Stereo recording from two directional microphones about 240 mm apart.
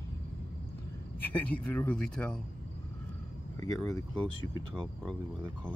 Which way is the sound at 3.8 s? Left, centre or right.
Centre.